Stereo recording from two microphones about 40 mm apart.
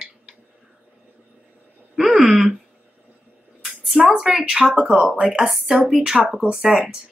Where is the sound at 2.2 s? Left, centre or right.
Centre.